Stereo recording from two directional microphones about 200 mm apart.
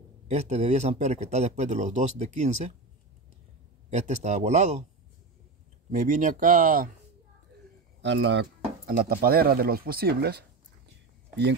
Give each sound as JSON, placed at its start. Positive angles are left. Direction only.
{"t": 0.3, "sound": "speech", "side_deg": -35}
{"t": 3.9, "sound": "speech", "side_deg": -35}
{"t": 5.9, "sound": "speech", "side_deg": -40}
{"t": 8.0, "sound": "speech", "side_deg": -60}